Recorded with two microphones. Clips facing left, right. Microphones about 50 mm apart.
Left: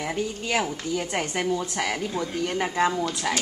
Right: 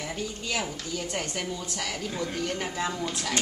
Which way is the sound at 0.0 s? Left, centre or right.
Centre.